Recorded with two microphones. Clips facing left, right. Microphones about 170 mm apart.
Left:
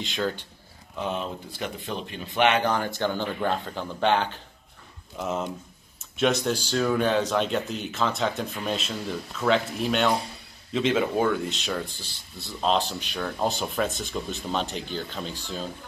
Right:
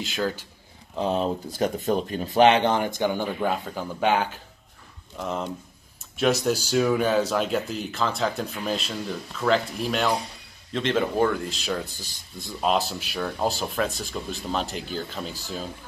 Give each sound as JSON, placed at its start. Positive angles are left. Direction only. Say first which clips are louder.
{"t": 0.0, "sound": "speech", "louder": "right 1 dB", "side_deg": -5}
{"t": 0.9, "sound": "speech", "louder": "right 6 dB", "side_deg": -35}
{"t": 5.1, "sound": "speech", "louder": "even", "side_deg": 0}
{"t": 12.0, "sound": "speech", "louder": "right 2 dB", "side_deg": -10}